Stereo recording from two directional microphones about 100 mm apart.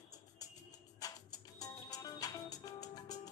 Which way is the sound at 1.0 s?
40° left (ahead or behind).